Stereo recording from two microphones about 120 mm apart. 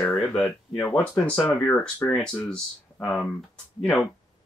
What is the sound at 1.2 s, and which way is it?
Speech, 15° left (ahead or behind).